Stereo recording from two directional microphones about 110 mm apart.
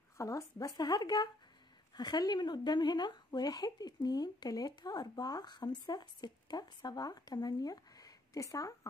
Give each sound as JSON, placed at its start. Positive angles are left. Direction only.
{"t": 0.2, "sound": "speech", "side_deg": 30}